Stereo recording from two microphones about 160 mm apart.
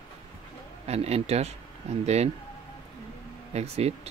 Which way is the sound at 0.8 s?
40° right (ahead or behind).